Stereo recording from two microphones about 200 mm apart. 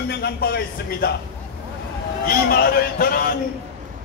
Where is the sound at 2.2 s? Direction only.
50° left (ahead or behind).